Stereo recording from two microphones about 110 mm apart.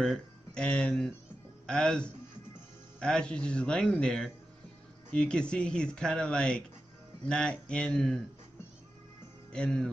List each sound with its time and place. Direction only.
0.0 s speech: 5° left (ahead or behind)
9.5 s speech: 5° left (ahead or behind)